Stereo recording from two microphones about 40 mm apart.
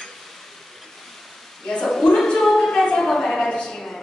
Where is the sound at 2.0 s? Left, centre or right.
Centre.